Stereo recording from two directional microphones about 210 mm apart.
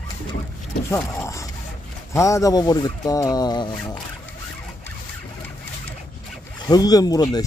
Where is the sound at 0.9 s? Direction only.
15° left (ahead or behind).